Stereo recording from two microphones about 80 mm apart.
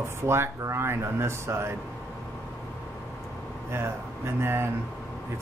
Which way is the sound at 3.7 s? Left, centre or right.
Right.